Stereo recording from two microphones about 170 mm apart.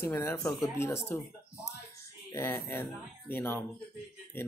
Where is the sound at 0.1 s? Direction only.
15° left (ahead or behind).